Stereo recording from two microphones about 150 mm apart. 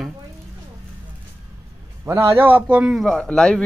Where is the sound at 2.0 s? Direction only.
15° right (ahead or behind); by 3.6 s 5° left (ahead or behind).